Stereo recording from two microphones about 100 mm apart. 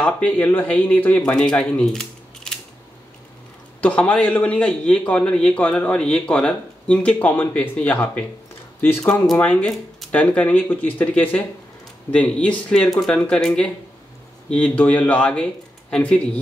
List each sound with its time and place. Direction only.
0.0 s a man's voice: 15° left (ahead or behind)
3.8 s a man's voice: 15° left (ahead or behind)
9.3 s a man's voice: 15° left (ahead or behind)